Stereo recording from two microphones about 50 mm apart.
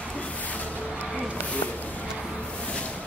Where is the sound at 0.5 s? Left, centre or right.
Left.